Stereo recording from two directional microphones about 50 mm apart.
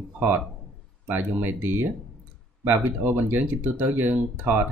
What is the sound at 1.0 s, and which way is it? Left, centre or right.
Speech, right.